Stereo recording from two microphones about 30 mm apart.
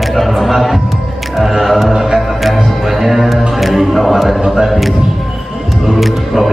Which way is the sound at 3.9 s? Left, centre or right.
Centre.